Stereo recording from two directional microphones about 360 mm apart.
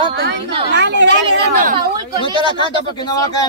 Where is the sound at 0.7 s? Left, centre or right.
Right.